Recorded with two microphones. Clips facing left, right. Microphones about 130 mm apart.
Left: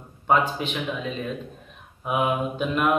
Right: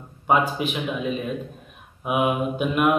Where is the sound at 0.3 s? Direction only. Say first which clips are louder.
Right 1 dB; 10° right (ahead or behind).